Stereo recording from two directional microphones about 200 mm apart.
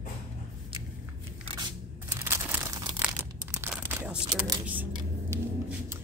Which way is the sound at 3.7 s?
10° right (ahead or behind).